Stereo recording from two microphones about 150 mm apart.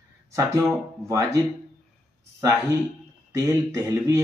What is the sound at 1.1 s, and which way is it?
Speech, 20° right (ahead or behind).